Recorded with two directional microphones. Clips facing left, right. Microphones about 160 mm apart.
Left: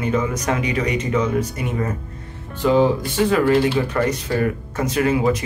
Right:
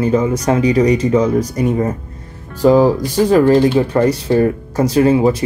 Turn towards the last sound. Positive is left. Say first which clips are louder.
# right 6 dB
turn(degrees=-30)  # may be behind; listen again after turning